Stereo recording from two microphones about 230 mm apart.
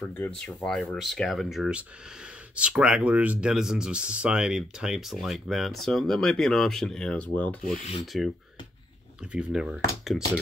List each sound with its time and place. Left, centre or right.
0.1 s speech: centre